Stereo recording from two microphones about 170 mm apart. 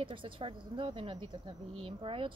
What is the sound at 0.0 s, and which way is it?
Speech, 30° right (ahead or behind).